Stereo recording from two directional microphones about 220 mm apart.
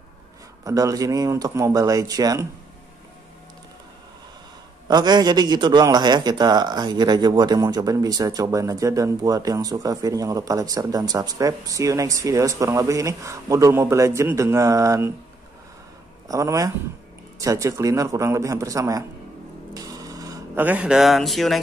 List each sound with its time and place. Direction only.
0.7 s a man's voice: 15° right (ahead or behind)
4.8 s a man's voice: 20° right (ahead or behind)
16.3 s a man's voice: 15° right (ahead or behind)
19.7 s a sound: 15° right (ahead or behind); by 21.5 s centre (ahead or behind)